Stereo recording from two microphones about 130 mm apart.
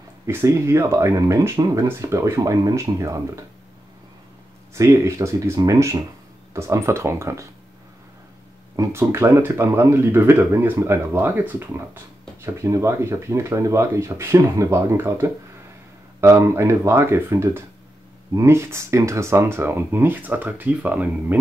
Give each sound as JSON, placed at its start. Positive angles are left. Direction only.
{"t": 0.3, "sound": "speech", "side_deg": -20}
{"t": 4.7, "sound": "speech", "side_deg": -20}
{"t": 8.7, "sound": "speech", "side_deg": -20}